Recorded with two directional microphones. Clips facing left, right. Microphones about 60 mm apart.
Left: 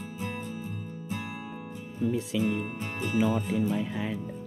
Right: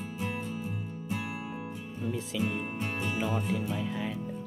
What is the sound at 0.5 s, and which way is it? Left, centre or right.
Music, right.